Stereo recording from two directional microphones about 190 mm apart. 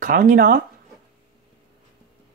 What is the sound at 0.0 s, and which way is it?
Speech, 45° right (ahead or behind).